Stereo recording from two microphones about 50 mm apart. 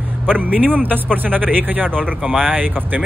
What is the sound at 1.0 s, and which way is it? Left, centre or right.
Speech, right.